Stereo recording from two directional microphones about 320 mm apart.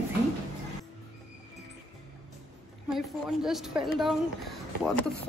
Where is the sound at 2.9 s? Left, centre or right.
Centre.